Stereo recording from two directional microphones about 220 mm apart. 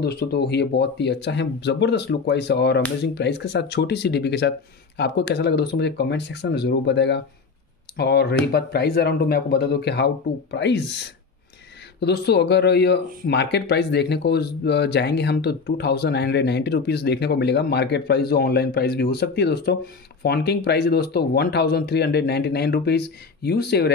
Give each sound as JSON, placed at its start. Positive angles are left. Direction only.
{"t": 0.0, "sound": "speech", "side_deg": 50}
{"t": 12.0, "sound": "speech", "side_deg": 50}